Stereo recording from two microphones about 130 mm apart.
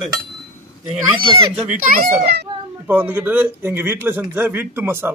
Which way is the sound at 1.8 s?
90° right.